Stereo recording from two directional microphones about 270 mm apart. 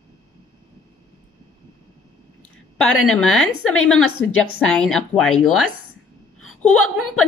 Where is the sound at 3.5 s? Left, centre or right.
Left.